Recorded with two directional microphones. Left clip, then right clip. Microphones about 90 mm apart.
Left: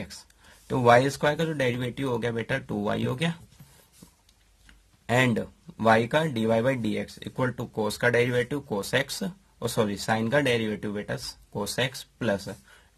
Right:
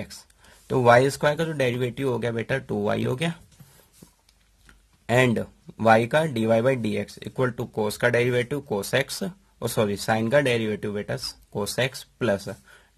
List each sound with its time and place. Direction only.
0.0 s speech: 45° right (ahead or behind)
4.0 s dog: 35° right (ahead or behind)
5.0 s speech: 60° right (ahead or behind)